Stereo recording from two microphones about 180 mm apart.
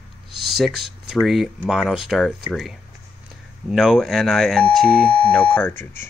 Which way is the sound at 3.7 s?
Centre (ahead or behind).